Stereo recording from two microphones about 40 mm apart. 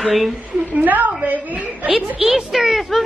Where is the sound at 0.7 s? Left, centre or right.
Right.